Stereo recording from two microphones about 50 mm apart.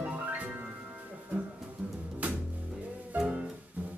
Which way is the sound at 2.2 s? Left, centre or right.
Right.